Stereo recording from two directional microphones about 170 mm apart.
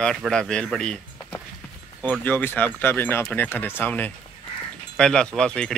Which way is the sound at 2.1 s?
10° left (ahead or behind).